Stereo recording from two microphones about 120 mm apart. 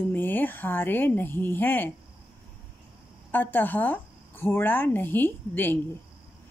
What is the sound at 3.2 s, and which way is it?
A woman's voice, 15° left (ahead or behind).